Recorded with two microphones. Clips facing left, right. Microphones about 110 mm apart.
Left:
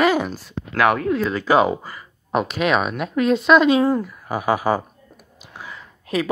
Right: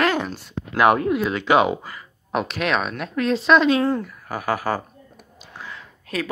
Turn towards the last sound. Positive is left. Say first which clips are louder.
# left 4 dB
turn(degrees=10)  # may be behind; listen again after turning